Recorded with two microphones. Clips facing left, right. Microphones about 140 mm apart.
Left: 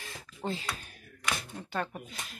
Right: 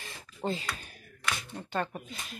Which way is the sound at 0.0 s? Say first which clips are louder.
Right 2 dB; centre (ahead or behind).